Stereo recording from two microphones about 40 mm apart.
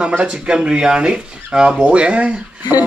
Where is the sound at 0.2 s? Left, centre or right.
Right.